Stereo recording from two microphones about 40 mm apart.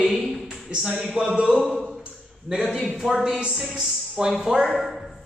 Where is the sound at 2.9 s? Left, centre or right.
Centre.